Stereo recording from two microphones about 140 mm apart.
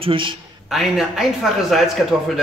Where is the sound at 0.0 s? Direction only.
40° right (ahead or behind).